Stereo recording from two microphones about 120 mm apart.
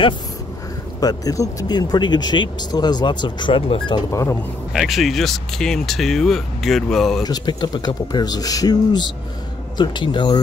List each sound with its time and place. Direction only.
1.0 s speech: 30° left (ahead or behind); by 4.0 s 45° left (ahead or behind)
4.1 s speech: 25° left (ahead or behind)
4.7 s speech: centre (ahead or behind)
7.2 s speech: 35° left (ahead or behind)